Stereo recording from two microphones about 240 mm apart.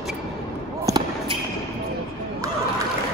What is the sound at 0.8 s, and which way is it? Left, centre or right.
Basketball bounce, centre.